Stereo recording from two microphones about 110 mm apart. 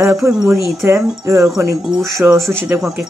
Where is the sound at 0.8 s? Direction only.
30° right (ahead or behind).